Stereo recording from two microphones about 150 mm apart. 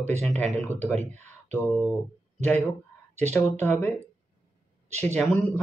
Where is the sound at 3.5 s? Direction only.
15° left (ahead or behind).